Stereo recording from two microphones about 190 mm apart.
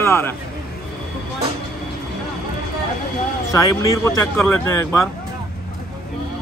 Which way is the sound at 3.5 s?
15° left (ahead or behind).